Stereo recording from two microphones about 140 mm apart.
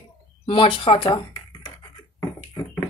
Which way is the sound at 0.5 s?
40° left (ahead or behind).